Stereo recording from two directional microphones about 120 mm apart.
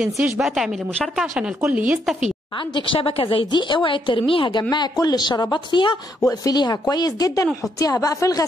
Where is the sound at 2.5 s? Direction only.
45° left (ahead or behind).